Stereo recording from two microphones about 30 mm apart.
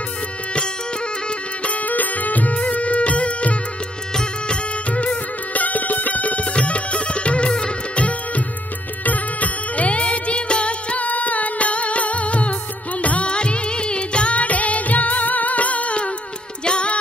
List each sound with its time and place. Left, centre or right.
1.6 s music: left
4.1 s music: left
4.9 s music: left
9.0 s music: left
11.1 s music: left
13.3 s music: left
14.3 s music: left
16.6 s music: left